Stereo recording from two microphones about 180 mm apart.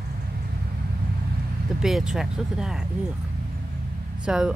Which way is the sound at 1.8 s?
Centre (ahead or behind).